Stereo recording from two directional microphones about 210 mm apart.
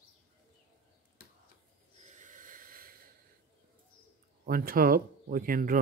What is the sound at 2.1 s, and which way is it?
Snort, 40° right (ahead or behind).